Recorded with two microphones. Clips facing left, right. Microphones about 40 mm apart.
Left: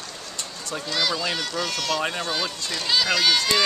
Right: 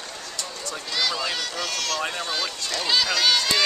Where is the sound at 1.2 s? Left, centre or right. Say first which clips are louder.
Left 2 dB; centre.